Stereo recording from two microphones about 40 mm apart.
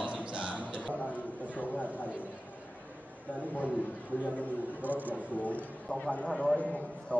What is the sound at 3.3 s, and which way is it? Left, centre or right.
Speech, left.